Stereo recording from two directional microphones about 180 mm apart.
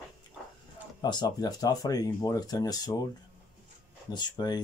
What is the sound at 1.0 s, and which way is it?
Speech, 20° left (ahead or behind).